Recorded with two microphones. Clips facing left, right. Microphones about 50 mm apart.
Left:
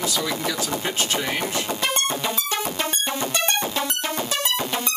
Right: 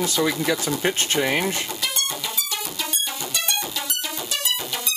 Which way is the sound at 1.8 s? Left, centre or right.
Left.